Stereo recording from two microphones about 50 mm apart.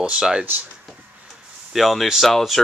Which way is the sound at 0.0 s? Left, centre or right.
Centre.